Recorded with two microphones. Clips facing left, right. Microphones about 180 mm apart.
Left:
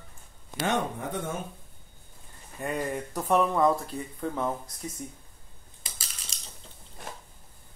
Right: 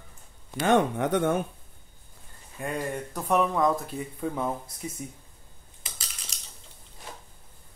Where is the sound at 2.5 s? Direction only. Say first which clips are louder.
Even; centre (ahead or behind).